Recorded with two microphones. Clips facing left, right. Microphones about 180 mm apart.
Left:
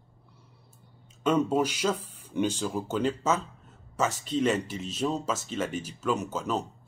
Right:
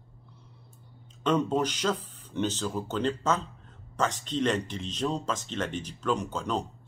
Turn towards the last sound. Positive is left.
turn(degrees=5)  # may be behind; listen again after turning